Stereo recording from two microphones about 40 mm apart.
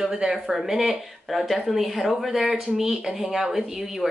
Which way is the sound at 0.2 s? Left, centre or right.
Right.